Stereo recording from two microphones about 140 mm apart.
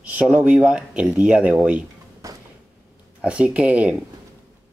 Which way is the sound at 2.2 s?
20° right (ahead or behind).